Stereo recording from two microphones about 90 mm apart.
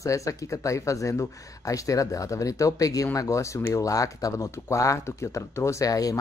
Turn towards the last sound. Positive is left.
turn(degrees=40)  # may be behind; listen again after turning